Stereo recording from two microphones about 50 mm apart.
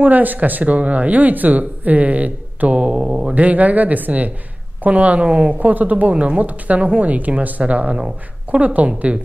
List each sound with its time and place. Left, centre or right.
0.0 s a woman's voice: right